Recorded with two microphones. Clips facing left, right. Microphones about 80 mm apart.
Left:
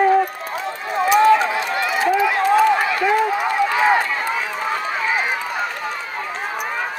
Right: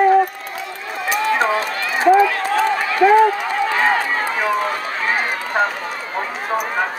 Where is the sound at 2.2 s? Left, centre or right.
Centre.